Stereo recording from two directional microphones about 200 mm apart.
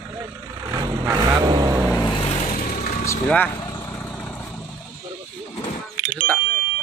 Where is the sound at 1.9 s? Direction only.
20° left (ahead or behind).